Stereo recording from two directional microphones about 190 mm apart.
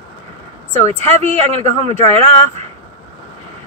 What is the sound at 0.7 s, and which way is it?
Speech, 35° right (ahead or behind).